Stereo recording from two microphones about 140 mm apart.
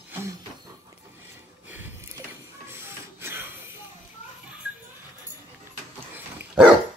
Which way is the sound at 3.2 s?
15° right (ahead or behind).